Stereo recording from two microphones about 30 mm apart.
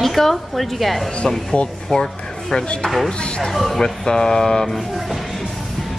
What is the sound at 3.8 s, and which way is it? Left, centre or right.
Speech, left.